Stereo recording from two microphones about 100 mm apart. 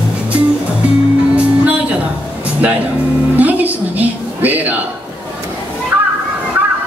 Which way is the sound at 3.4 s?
15° right (ahead or behind).